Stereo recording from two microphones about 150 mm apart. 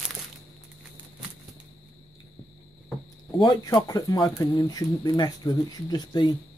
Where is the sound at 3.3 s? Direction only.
25° left (ahead or behind).